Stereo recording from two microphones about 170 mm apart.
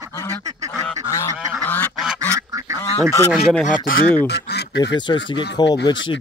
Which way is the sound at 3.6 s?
55° left (ahead or behind).